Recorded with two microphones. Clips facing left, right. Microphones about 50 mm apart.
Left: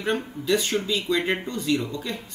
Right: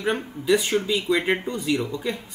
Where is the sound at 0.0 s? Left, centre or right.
Centre.